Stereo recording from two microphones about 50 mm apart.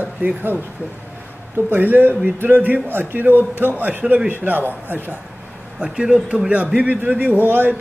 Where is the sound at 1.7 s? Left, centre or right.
Right.